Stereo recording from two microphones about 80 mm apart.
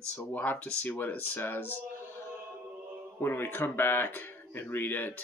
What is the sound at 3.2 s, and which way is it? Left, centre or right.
Speech, left.